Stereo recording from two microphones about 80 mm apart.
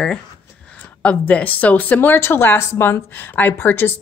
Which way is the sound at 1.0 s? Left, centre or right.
Centre.